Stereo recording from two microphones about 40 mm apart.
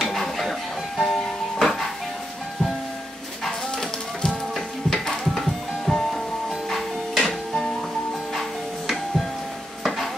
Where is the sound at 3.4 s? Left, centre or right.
Centre.